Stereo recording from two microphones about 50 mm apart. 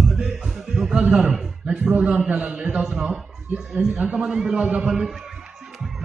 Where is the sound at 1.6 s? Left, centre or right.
Right.